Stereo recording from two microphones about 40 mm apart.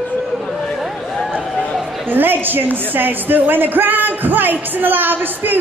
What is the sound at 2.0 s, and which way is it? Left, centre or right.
A woman's voice, right.